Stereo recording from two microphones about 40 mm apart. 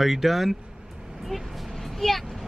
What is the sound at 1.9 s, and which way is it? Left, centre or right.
Speech, centre.